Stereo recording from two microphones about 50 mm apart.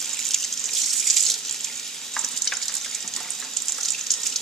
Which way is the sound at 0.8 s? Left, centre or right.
Centre.